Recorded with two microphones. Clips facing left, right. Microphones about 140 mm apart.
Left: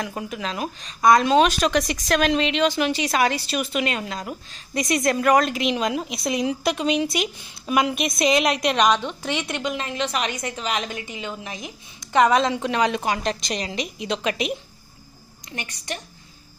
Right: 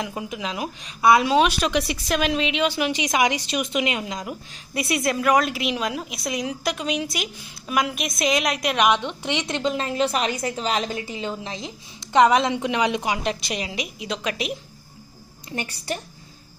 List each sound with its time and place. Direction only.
0.0 s speech: 10° right (ahead or behind)
15.5 s a woman's voice: 35° right (ahead or behind)